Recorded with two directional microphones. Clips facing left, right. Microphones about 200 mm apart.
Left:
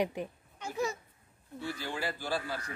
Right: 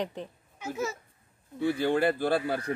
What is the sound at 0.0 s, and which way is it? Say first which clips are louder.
Speech: left 2 dB; 10° left (ahead or behind).